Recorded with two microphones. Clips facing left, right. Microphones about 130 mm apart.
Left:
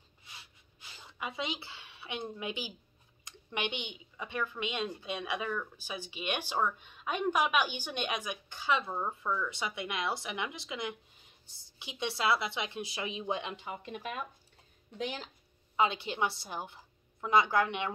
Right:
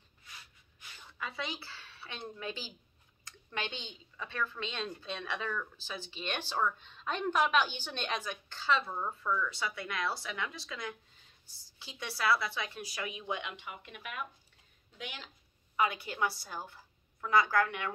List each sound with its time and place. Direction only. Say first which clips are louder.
0.3 s gasp: left 1 dB; 30° left (ahead or behind)
1.0 s a woman's voice: left 3 dB; 15° left (ahead or behind); by 15.2 s 40° left (ahead or behind)
15.7 s a woman's voice: left 2 dB; 25° left (ahead or behind)